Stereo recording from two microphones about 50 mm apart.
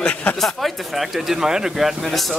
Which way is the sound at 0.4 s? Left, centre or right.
Centre.